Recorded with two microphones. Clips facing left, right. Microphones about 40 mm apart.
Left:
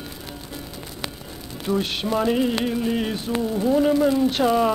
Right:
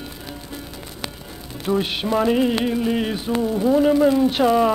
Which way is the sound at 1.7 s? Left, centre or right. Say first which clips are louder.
Right 2 dB; centre.